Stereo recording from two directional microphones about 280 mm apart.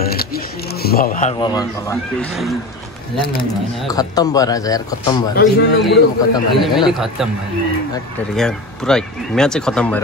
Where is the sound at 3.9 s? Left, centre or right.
Centre.